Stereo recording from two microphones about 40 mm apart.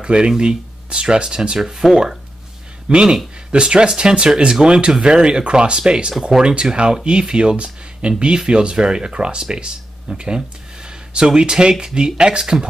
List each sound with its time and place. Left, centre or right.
0.0 s speech: right
2.9 s speech: right